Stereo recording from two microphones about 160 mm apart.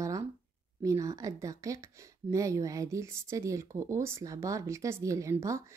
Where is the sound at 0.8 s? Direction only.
20° right (ahead or behind).